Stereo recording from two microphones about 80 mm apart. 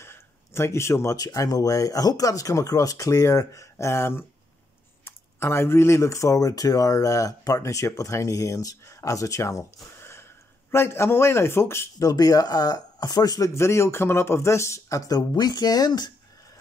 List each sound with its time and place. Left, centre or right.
0.0 s a sound: left
1.1 s speech: left
12.0 s speech: left
13.6 s speech: left